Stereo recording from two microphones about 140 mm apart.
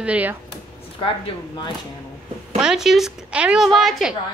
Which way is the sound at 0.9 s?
40° left (ahead or behind).